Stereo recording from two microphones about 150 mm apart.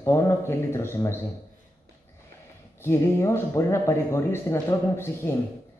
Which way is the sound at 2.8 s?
15° left (ahead or behind).